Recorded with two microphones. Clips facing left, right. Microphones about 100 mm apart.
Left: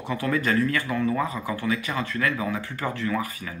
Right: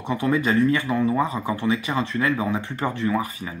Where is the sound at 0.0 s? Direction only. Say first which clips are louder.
Right 3 dB; 25° right (ahead or behind).